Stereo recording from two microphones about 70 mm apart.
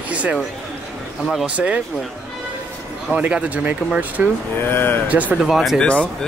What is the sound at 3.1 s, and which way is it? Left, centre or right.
Speech, centre.